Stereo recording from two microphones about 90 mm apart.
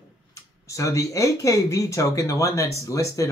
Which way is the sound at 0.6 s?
35° left (ahead or behind).